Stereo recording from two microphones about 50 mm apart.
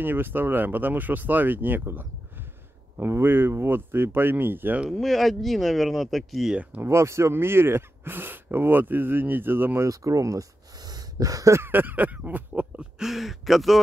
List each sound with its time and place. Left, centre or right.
0.0 s speech: right
5.0 s speech: centre
6.8 s speech: right
9.8 s speech: right
11.6 s speech: right
13.0 s speech: centre